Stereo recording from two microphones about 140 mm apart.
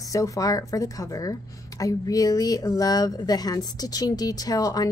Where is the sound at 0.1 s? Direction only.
25° left (ahead or behind).